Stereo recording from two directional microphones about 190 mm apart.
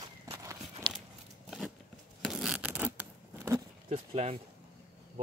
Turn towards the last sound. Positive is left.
turn(degrees=-35)  # may be behind; listen again after turning